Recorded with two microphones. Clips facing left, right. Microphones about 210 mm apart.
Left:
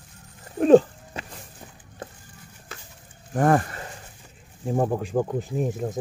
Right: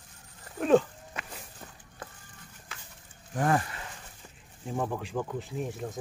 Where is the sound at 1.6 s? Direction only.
15° left (ahead or behind).